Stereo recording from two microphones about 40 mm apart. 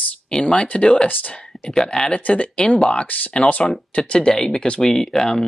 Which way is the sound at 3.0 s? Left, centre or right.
Left.